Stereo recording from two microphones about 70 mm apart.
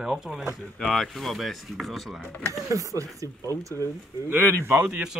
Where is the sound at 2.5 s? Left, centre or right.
Right.